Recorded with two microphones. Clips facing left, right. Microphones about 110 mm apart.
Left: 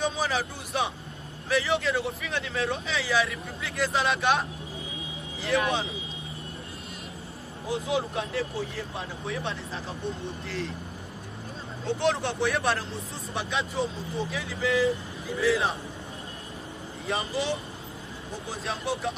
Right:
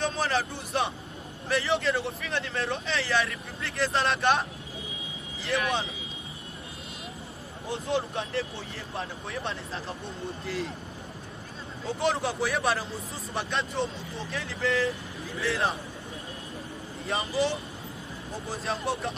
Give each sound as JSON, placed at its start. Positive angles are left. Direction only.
{"t": 0.0, "sound": "a man's voice", "side_deg": 0}
{"t": 5.5, "sound": "speech", "side_deg": 0}
{"t": 7.6, "sound": "speech", "side_deg": 0}
{"t": 11.8, "sound": "speech", "side_deg": 0}
{"t": 17.0, "sound": "speech", "side_deg": 0}